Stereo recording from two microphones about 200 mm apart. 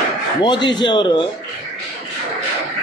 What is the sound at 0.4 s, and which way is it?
Speech, 20° left (ahead or behind).